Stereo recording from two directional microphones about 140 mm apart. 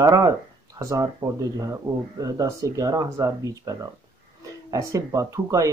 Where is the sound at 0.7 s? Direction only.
25° right (ahead or behind).